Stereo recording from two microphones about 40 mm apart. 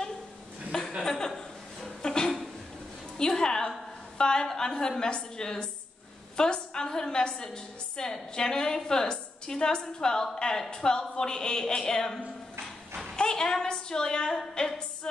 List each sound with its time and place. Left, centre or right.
0.7 s chuckle: centre
1.0 s a sound: centre
4.2 s a woman's voice: centre